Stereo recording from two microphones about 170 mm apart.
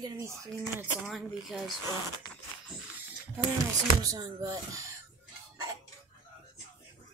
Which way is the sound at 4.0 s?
20° right (ahead or behind).